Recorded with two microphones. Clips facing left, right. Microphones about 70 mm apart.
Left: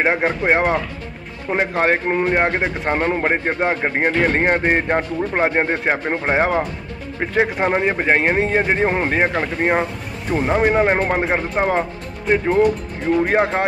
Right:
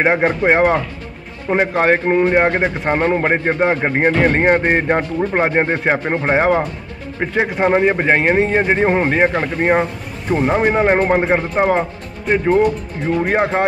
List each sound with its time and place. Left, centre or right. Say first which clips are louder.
0.0 s a man's voice: right 3 dB; centre
1.7 s speech: right 3 dB; right
2.1 s a man's voice: right 4 dB; centre